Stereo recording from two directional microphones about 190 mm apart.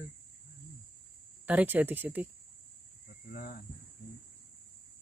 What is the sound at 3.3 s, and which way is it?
Speech, 50° left (ahead or behind).